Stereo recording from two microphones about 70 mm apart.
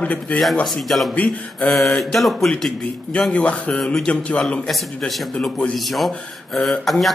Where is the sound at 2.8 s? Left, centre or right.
Centre.